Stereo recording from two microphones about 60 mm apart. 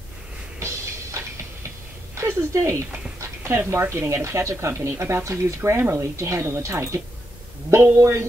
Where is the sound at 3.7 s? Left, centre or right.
Right.